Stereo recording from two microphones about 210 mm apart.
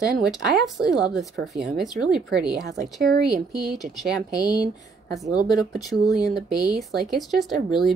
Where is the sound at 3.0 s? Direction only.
45° right (ahead or behind).